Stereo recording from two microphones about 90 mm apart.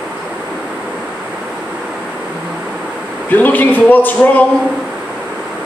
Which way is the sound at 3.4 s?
20° left (ahead or behind).